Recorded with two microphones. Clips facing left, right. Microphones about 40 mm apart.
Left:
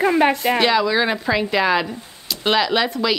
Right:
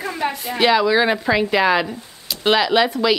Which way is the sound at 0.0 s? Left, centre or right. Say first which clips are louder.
Left 8 dB; left.